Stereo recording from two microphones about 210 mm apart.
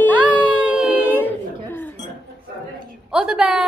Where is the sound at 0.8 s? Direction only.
5° right (ahead or behind).